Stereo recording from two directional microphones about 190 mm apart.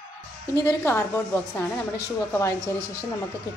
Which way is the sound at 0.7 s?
15° left (ahead or behind).